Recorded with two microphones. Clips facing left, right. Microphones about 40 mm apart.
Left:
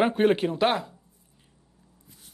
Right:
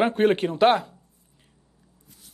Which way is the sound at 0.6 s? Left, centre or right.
Centre.